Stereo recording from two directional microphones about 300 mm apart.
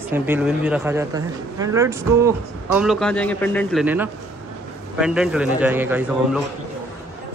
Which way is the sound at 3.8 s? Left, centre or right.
Centre.